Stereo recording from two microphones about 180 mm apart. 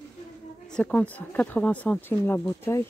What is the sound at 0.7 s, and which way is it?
Speech, 5° left (ahead or behind).